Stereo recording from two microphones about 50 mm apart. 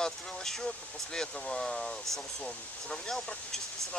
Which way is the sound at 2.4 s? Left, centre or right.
Centre.